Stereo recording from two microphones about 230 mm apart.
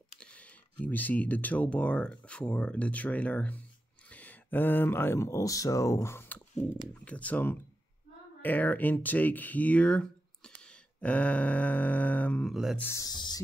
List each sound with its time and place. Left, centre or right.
0.2 s speech: centre
10.6 s a sound: centre
12.8 s speech: centre